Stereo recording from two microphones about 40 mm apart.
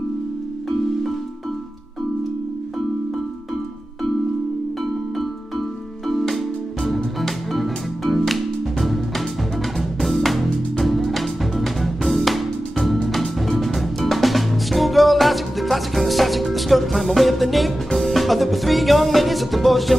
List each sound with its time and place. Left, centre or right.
5.6 s music: centre